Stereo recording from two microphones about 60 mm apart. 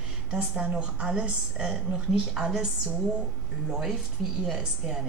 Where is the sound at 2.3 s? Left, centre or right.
Centre.